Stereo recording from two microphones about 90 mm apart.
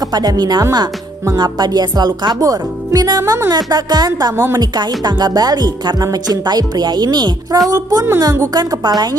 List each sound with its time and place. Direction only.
0.0 s speech: 45° right (ahead or behind)
1.4 s speech: 50° right (ahead or behind)